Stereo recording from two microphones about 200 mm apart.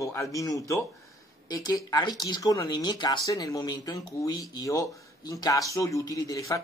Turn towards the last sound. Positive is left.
turn(degrees=15)  # may be behind; listen again after turning